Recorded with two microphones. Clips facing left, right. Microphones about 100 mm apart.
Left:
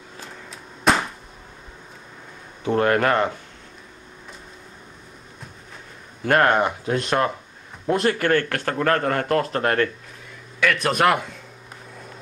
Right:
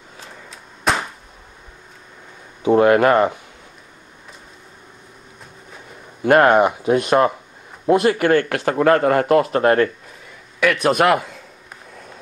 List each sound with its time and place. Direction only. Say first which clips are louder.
0.5 s a sound: left 1 dB; centre (ahead or behind)
2.6 s a man's voice: right 6 dB; 10° right (ahead or behind)
6.2 s a man's voice: right 5 dB; 10° right (ahead or behind)